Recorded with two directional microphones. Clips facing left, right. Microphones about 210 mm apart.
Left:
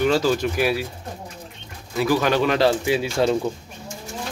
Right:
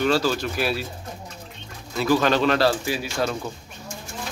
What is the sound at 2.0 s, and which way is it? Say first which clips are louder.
Speech: even; 10° left (ahead or behind).